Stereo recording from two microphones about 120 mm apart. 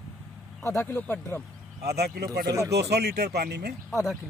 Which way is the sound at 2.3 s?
30° right (ahead or behind).